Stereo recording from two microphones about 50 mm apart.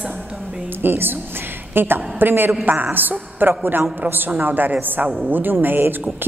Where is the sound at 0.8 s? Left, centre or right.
Right.